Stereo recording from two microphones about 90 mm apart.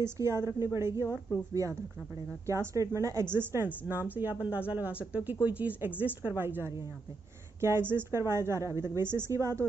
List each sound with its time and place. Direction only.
0.0 s a woman's voice: 30° right (ahead or behind)